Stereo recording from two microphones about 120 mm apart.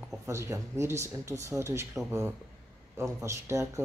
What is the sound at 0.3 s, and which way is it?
Speech, 25° right (ahead or behind).